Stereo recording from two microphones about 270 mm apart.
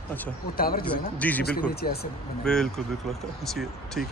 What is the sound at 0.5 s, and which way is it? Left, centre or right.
Speech, left.